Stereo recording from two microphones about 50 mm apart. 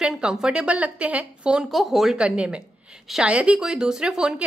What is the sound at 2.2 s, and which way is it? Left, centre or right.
A woman's voice, right.